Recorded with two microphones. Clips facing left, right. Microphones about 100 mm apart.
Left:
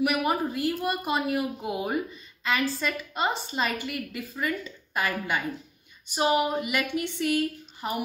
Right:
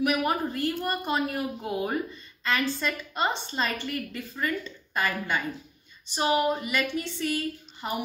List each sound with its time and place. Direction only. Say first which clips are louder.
0.0 s a woman's voice: even; 5° left (ahead or behind)